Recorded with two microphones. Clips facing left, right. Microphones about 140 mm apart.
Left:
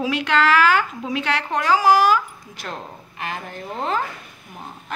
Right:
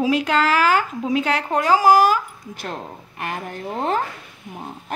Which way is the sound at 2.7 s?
45° right (ahead or behind).